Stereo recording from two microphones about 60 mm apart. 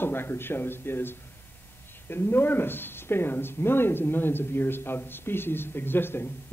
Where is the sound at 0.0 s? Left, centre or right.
Left.